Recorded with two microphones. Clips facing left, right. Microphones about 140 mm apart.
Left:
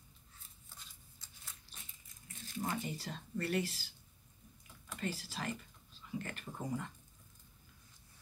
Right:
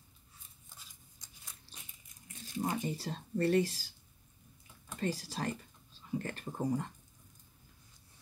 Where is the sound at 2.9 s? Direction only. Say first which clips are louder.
Right 5 dB; 35° right (ahead or behind).